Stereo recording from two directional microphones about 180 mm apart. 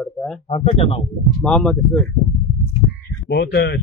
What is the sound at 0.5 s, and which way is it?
Speech, 35° left (ahead or behind).